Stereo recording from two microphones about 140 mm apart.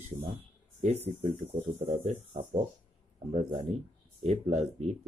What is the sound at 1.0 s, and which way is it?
Speech, 60° right (ahead or behind).